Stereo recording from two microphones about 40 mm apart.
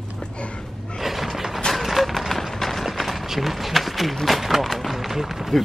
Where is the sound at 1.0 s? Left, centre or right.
Centre.